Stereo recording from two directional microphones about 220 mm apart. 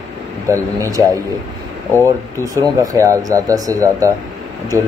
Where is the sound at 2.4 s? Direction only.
15° right (ahead or behind).